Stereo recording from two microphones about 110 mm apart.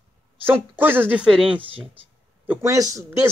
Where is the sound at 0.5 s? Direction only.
20° right (ahead or behind).